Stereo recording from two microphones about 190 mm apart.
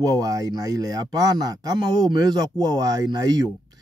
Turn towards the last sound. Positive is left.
turn(degrees=-20)  # may be behind; listen again after turning